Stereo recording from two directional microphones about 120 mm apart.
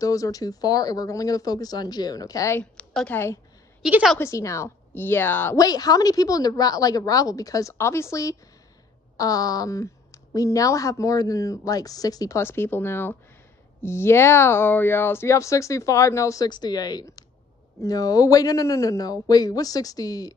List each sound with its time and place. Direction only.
0.0 s a woman's voice: 30° left (ahead or behind)
2.6 s a woman's voice: 5° left (ahead or behind)
3.1 s a woman's voice: 20° left (ahead or behind)
3.8 s a woman's voice: 5° right (ahead or behind)
4.2 s a woman's voice: 25° left (ahead or behind)
5.6 s a woman's voice: 30° left (ahead or behind)